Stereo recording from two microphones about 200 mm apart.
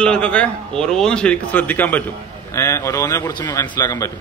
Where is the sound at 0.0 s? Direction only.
5° left (ahead or behind).